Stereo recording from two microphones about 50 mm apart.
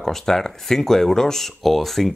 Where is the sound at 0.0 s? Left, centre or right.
Centre.